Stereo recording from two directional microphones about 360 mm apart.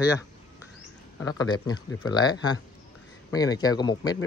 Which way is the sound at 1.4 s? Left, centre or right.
Centre.